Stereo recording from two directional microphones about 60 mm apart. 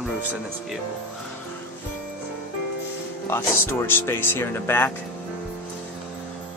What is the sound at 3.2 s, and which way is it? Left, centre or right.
Speech, left.